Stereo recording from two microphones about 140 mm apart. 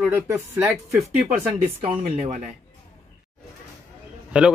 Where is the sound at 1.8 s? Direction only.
55° right (ahead or behind).